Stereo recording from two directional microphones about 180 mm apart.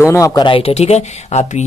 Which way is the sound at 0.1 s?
20° left (ahead or behind).